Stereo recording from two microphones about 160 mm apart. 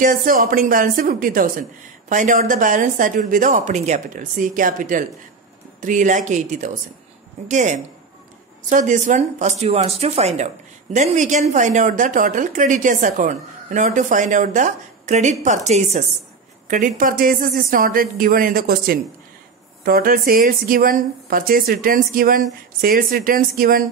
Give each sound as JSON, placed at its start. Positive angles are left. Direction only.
{"t": 0.0, "sound": "speech", "side_deg": -60}
{"t": 16.6, "sound": "speech", "side_deg": -55}